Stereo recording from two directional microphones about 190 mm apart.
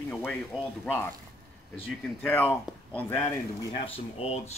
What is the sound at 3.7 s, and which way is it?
Speech, 30° left (ahead or behind).